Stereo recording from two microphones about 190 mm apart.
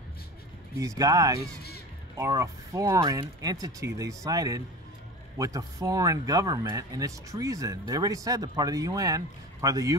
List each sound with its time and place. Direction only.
0.7 s speech: 15° right (ahead or behind)